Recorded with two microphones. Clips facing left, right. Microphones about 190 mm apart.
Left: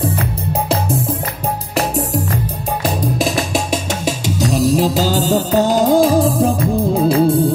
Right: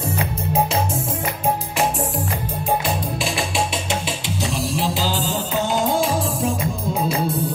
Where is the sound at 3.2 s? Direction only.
40° left (ahead or behind).